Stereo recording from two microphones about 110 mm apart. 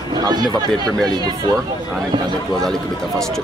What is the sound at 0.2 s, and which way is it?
Speech, 40° right (ahead or behind).